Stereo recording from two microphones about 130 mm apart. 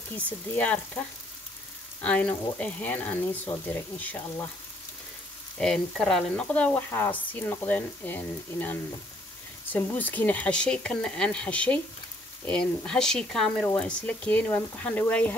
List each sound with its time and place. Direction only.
0.6 s speech: 10° left (ahead or behind)
5.6 s speech: 5° left (ahead or behind)